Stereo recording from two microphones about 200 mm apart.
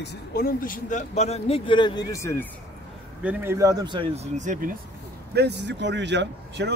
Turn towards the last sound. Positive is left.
turn(degrees=-60)  # may be behind; listen again after turning